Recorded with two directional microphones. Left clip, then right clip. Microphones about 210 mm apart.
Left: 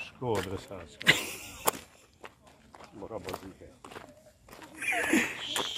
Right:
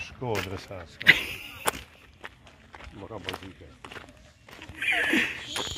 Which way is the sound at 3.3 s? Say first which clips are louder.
Right 2 dB; centre (ahead or behind).